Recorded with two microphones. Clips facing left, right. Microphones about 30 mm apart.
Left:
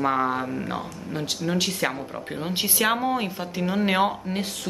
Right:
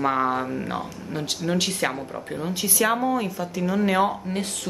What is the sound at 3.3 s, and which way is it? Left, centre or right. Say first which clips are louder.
Speech: right 1 dB; left.